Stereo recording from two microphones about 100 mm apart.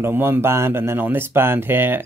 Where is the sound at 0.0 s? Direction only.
20° right (ahead or behind).